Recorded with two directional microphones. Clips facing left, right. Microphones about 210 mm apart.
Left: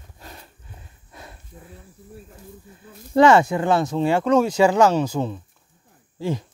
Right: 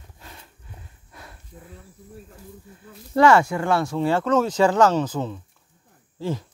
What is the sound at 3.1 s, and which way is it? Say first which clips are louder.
Speech: left 2 dB; 20° left (ahead or behind).